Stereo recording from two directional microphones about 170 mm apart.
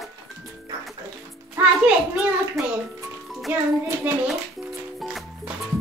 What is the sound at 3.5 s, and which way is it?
Speech, 15° right (ahead or behind).